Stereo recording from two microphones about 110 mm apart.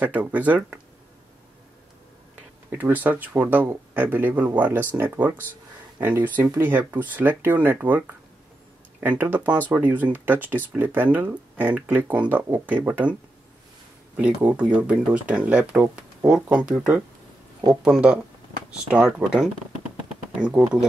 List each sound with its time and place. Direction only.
0.0 s speech: 15° right (ahead or behind)
2.7 s speech: 15° right (ahead or behind)
9.2 s speech: 15° right (ahead or behind)
14.1 s speech: 10° right (ahead or behind)